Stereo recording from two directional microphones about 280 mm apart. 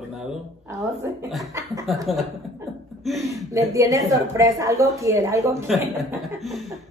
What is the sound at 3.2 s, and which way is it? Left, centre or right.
A woman's voice, centre.